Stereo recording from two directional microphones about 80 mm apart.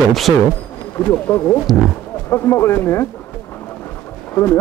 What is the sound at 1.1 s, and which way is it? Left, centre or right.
Speech, left.